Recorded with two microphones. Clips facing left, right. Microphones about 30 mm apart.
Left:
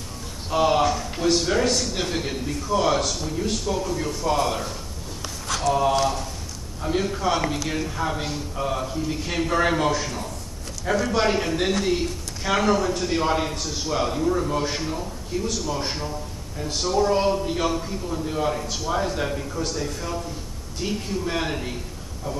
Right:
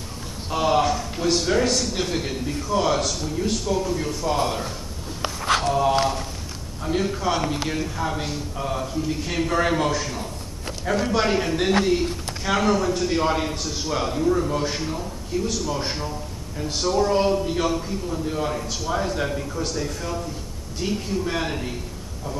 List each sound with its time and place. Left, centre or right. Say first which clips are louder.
0.5 s a man's voice: left 1 dB; centre
5.2 s a sound: right 6 dB; right
5.7 s a man's voice: left 4 dB; centre